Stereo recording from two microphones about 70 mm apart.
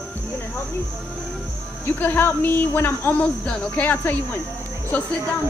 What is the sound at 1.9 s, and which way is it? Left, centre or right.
Speech, left.